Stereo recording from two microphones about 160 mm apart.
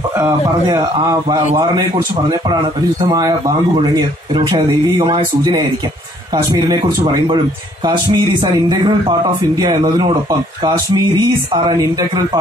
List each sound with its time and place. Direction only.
0.2 s speech: 20° right (ahead or behind)